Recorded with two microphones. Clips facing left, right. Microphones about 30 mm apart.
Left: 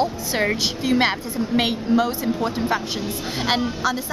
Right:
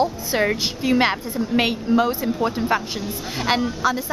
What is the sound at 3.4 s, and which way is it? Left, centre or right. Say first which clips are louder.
Speech: right 1 dB; centre.